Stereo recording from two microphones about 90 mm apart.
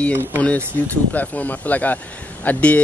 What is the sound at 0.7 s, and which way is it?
Speech, 20° left (ahead or behind).